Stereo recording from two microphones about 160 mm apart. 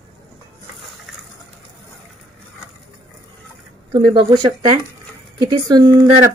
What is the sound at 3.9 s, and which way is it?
Speech, 35° right (ahead or behind).